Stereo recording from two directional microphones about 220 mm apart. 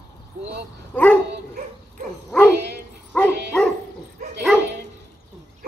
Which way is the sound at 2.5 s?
50° right (ahead or behind).